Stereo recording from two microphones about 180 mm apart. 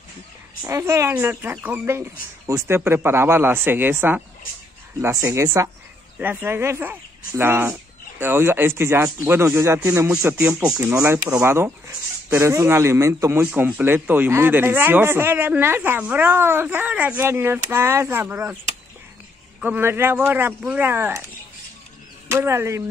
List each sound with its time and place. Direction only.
0.7 s a man's voice: 15° right (ahead or behind)
19.6 s a man's voice: 10° right (ahead or behind)
22.3 s a man's voice: 15° right (ahead or behind)